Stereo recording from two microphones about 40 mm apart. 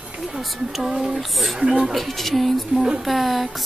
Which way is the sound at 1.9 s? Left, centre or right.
Centre.